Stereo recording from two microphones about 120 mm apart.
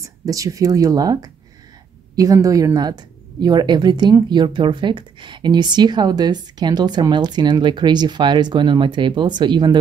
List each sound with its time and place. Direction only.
0.0 s speech: 30° right (ahead or behind)